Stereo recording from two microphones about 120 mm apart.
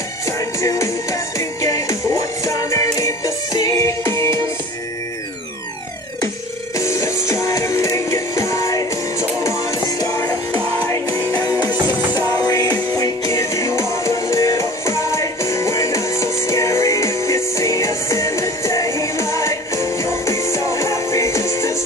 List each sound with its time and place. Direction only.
0.6 s music: 25° left (ahead or behind)
6.8 s music: 25° left (ahead or behind)
9.9 s music: 25° left (ahead or behind)